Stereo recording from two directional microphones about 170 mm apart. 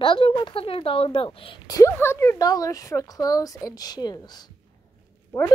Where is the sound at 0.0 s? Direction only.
30° left (ahead or behind).